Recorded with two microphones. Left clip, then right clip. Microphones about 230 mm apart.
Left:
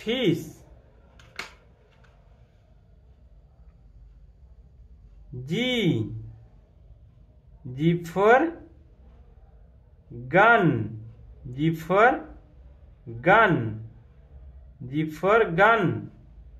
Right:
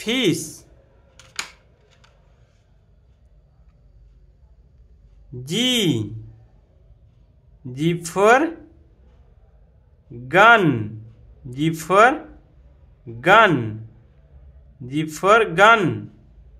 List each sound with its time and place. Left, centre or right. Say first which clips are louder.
0.0 s speech: right 4 dB; right
5.4 s speech: right 6 dB; right
7.7 s speech: right 3 dB; right
10.2 s a man's voice: right 5 dB; right
13.2 s a man's voice: right 5 dB; right
14.9 s a man's voice: right 6 dB; right